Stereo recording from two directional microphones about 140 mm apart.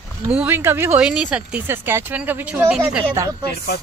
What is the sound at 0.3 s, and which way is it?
Speech, 10° right (ahead or behind).